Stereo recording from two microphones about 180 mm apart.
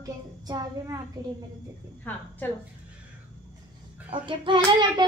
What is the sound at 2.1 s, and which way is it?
Speech, 10° left (ahead or behind).